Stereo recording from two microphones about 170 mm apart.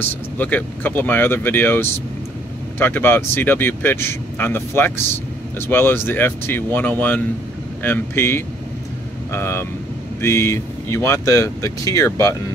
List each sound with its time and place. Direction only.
0.0 s speech: 10° left (ahead or behind)